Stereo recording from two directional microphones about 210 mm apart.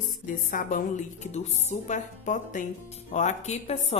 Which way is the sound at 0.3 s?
40° left (ahead or behind).